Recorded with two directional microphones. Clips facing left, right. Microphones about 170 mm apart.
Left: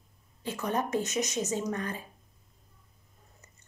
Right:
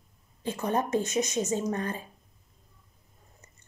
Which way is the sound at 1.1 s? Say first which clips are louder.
Right 3 dB; 50° right (ahead or behind).